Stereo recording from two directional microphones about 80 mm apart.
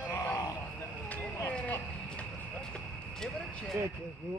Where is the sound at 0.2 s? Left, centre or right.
Left.